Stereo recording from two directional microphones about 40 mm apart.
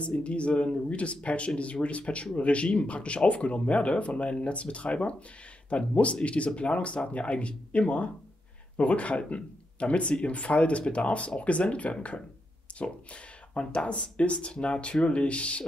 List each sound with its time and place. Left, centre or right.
0.0 s speech: left